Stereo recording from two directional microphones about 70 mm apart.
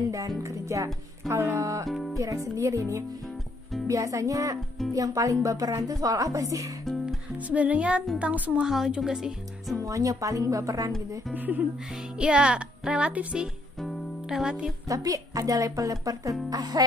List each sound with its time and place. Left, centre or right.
0.4 s a woman's voice: right
1.3 s music: right
1.6 s a woman's voice: right
1.9 s music: centre
2.1 s a woman's voice: right
6.8 s music: centre
7.3 s speech: right
8.6 s speech: centre
9.8 s a woman's voice: right
11.3 s speech: right
12.2 s speech: centre
14.9 s speech: right
16.4 s speech: right